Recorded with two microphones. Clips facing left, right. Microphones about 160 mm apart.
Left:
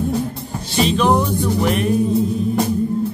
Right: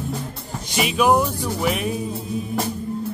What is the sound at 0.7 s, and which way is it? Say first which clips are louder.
Music: left 2 dB; 10° right (ahead or behind).